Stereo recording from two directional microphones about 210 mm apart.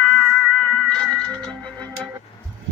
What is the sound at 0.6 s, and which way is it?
Cat, 5° left (ahead or behind).